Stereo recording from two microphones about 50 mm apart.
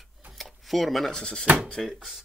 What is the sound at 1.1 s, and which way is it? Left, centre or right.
Speech, centre.